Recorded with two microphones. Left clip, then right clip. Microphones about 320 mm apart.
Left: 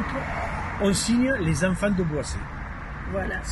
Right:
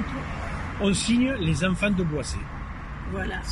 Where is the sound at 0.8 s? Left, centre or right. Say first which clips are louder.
Even; centre.